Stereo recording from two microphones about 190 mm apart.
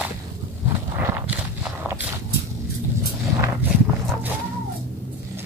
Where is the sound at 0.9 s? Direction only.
10° right (ahead or behind).